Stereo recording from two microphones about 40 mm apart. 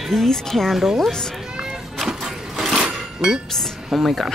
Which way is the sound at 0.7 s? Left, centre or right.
Centre.